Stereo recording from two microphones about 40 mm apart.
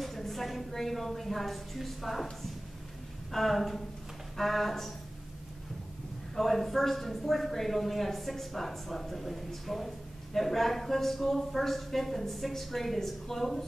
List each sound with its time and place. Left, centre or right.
0.0 s a woman's voice: centre
3.3 s speech: centre
6.3 s speech: centre